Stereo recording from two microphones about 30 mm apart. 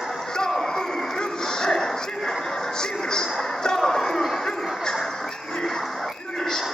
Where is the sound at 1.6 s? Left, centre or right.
Centre.